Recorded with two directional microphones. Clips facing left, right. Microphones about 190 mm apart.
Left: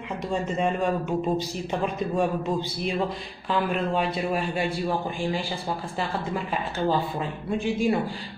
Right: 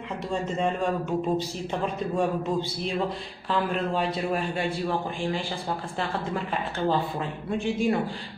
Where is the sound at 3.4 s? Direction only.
10° left (ahead or behind).